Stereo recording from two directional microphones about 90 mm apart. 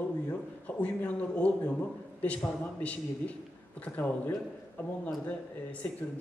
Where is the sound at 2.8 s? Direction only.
15° left (ahead or behind).